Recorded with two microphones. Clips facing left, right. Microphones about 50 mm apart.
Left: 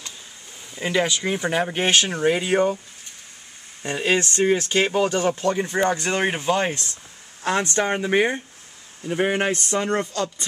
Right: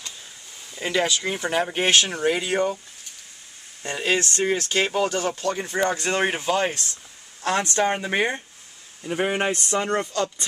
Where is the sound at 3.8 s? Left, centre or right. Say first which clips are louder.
Left 2 dB; centre.